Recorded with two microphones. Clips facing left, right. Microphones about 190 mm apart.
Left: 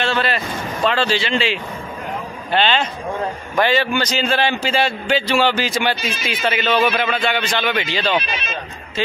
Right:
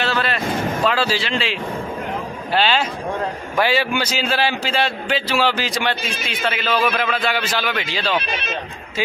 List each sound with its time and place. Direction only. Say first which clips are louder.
0.0 s vehicle: left 2 dB; centre (ahead or behind)
0.8 s a man's voice: left 4 dB; 5° right (ahead or behind)
8.2 s speech: even; 55° right (ahead or behind)